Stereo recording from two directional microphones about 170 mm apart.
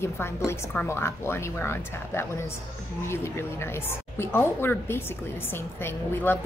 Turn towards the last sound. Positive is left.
turn(degrees=15)  # may be behind; listen again after turning